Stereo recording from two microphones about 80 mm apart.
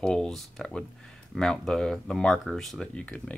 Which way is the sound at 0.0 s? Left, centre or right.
Centre.